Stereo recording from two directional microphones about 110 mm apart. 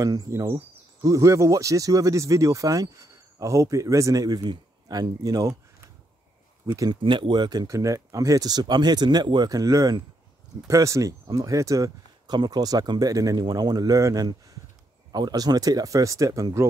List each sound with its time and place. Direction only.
0.0 s speech: 35° right (ahead or behind)
6.6 s speech: 35° right (ahead or behind)
7.0 s speech: 45° right (ahead or behind)